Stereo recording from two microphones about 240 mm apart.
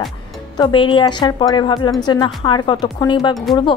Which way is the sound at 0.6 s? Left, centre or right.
Centre.